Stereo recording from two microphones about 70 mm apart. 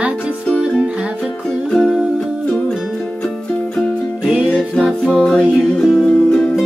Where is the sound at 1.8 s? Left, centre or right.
Centre.